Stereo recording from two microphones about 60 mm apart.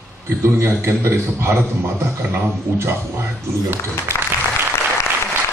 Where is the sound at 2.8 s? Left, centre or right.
Right.